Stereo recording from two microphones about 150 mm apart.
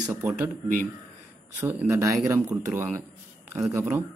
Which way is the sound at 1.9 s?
20° right (ahead or behind).